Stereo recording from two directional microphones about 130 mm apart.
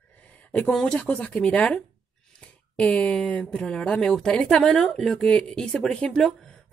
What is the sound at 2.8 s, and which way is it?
A woman's voice, 10° left (ahead or behind).